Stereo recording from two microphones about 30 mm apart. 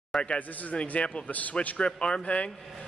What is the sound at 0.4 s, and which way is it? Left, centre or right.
Speech, left.